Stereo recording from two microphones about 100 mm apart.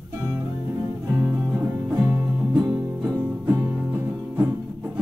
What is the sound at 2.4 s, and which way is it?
Music, 5° right (ahead or behind).